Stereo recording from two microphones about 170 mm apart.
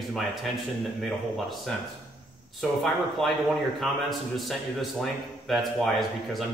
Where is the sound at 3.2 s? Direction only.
Centre (ahead or behind).